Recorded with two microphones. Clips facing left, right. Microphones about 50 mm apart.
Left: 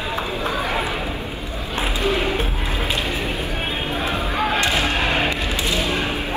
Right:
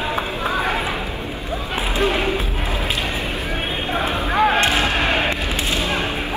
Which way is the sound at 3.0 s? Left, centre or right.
Right.